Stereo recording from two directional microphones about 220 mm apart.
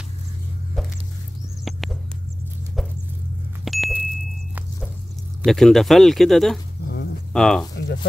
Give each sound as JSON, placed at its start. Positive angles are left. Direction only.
{"t": 1.6, "sound": "a sound", "side_deg": 0}
{"t": 3.6, "sound": "car", "side_deg": 0}
{"t": 5.4, "sound": "speech", "side_deg": 0}